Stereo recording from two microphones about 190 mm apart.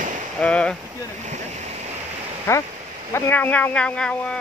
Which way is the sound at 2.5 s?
10° left (ahead or behind).